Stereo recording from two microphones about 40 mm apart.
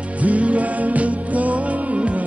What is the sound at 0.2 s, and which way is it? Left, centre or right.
Music, right.